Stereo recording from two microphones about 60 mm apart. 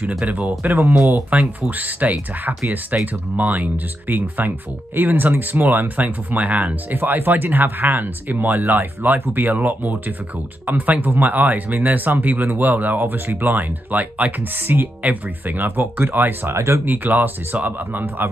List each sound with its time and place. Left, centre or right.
0.2 s speech: right
16.5 s speech: right
16.8 s speech: right